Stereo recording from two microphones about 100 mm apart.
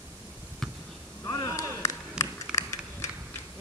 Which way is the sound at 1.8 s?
30° left (ahead or behind).